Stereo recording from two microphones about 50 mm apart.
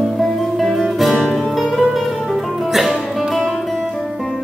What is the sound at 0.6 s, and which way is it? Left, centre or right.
Music, centre.